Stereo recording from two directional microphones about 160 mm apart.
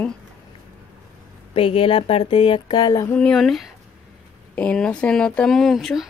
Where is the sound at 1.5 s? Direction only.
35° left (ahead or behind).